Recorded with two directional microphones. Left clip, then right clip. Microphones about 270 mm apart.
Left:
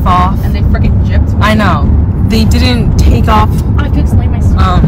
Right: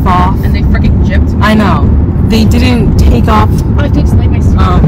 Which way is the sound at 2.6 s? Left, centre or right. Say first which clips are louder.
Right 2 dB; left.